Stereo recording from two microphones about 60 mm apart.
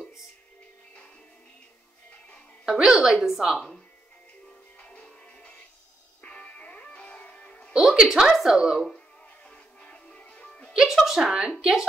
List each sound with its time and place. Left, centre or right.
2.6 s a woman's voice: centre
4.7 s music: left
7.7 s a woman's voice: centre
9.5 s music: centre
10.7 s a woman's voice: centre